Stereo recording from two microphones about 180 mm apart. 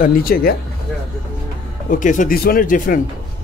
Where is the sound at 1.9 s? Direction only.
45° left (ahead or behind).